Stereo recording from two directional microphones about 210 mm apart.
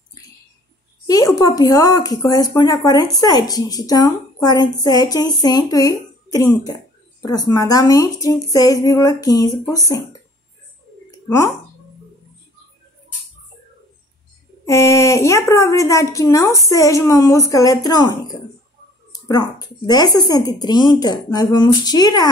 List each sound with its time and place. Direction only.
1.0 s speech: 15° left (ahead or behind)
11.2 s speech: 15° left (ahead or behind)
14.7 s speech: 15° left (ahead or behind)